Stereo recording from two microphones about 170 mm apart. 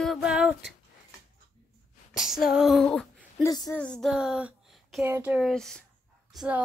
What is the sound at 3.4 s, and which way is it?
Speech, 20° left (ahead or behind).